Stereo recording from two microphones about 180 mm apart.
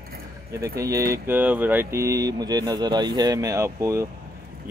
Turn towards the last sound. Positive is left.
turn(degrees=-15)  # may be behind; listen again after turning